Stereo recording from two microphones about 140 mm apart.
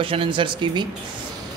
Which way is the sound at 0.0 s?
40° right (ahead or behind).